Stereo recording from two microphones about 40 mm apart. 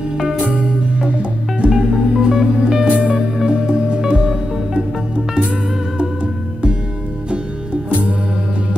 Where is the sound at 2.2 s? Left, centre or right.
Centre.